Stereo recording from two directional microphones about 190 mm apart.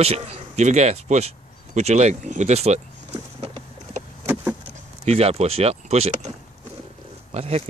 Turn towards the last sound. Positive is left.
turn(degrees=-35)  # may be behind; listen again after turning